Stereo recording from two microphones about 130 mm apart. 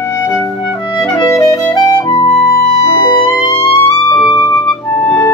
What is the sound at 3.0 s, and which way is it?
Music, 30° left (ahead or behind).